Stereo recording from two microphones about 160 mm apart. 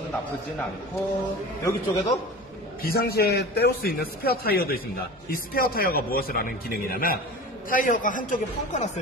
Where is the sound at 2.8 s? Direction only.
75° left (ahead or behind); by 8.9 s 50° left (ahead or behind).